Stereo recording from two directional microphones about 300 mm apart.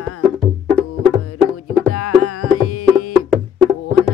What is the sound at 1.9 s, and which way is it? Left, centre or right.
Music, left.